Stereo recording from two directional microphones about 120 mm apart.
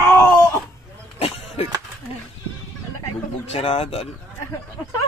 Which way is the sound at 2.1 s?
55° left (ahead or behind).